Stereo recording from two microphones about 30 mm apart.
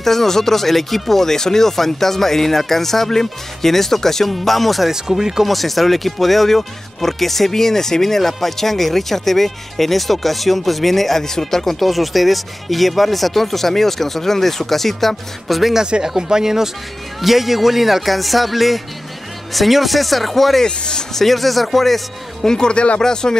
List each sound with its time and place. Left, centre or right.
0.0 s speech: centre
4.9 s speech: centre
5.5 s speech: centre
11.8 s speech: centre
16.2 s speech: centre
20.6 s speech: left
21.1 s speech: centre
22.5 s speech: left